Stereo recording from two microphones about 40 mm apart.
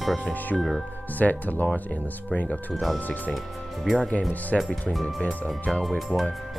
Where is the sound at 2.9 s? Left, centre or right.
Left.